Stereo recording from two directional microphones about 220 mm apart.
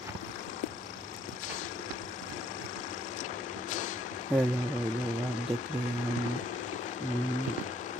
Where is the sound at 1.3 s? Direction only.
35° left (ahead or behind).